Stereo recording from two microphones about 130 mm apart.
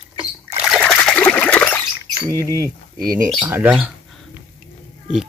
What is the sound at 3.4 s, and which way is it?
Speech, 15° right (ahead or behind).